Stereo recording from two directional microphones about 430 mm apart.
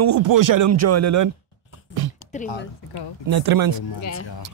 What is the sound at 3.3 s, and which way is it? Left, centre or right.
Speech, right.